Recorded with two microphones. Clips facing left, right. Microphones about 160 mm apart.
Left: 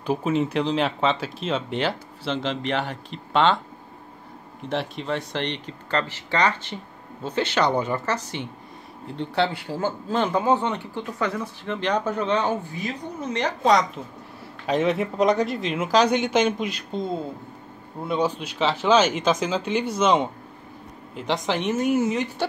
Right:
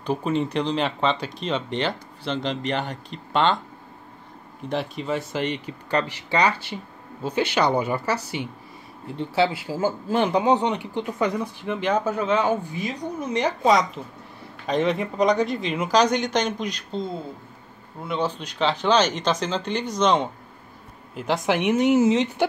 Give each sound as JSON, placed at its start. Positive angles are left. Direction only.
{"t": 0.0, "sound": "speech", "side_deg": 5}
{"t": 4.6, "sound": "speech", "side_deg": 0}
{"t": 18.0, "sound": "speech", "side_deg": 15}
{"t": 18.4, "sound": "speech", "side_deg": 5}
{"t": 21.2, "sound": "speech", "side_deg": -5}